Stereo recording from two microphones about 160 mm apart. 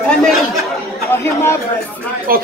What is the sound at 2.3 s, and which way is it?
Speech, 65° right (ahead or behind).